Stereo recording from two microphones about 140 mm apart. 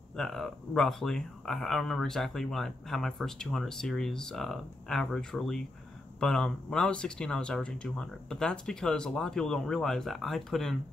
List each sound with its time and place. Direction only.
0.1 s speech: 5° left (ahead or behind)